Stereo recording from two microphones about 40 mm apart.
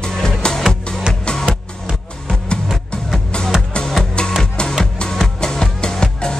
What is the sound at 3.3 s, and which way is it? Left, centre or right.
Music, left.